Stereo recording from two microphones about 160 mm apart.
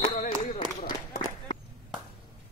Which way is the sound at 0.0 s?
45° left (ahead or behind).